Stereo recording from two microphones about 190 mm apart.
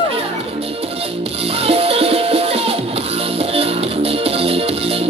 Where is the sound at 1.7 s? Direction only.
30° right (ahead or behind).